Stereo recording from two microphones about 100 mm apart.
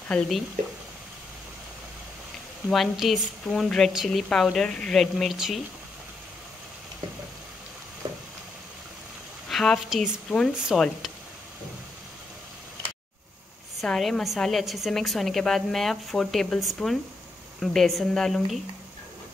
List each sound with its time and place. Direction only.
0.1 s speech: 5° left (ahead or behind)
2.7 s a woman's voice: centre (ahead or behind)
8.0 s a sound: 50° right (ahead or behind)
9.5 s a woman's voice: 5° left (ahead or behind)
13.7 s a woman's voice: centre (ahead or behind)